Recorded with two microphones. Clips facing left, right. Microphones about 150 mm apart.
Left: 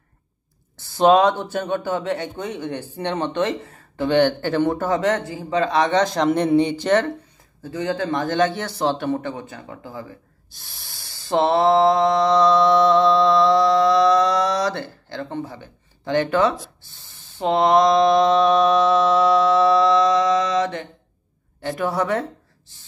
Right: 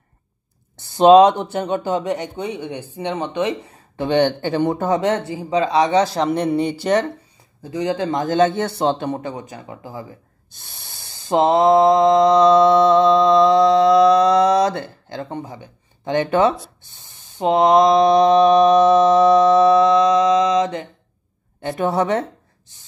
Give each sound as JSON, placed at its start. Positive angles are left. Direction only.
{"t": 0.7, "sound": "a man's voice", "side_deg": -20}
{"t": 10.5, "sound": "snort", "side_deg": -20}
{"t": 11.0, "sound": "mantra", "side_deg": -20}
{"t": 21.5, "sound": "a woman's voice", "side_deg": -20}